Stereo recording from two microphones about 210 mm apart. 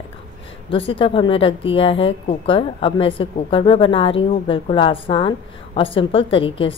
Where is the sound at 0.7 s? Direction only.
25° left (ahead or behind).